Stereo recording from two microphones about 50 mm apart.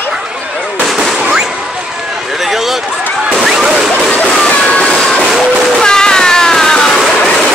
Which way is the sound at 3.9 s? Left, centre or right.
Left.